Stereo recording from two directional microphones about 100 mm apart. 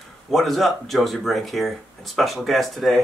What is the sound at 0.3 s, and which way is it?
Speech, centre (ahead or behind).